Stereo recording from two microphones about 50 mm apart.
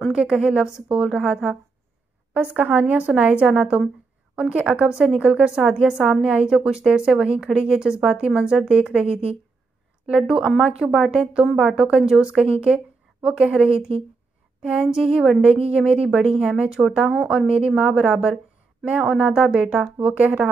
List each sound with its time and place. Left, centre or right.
0.1 s a woman's voice: centre
10.6 s a woman's voice: centre
14.6 s a sound: right
15.0 s a woman's voice: centre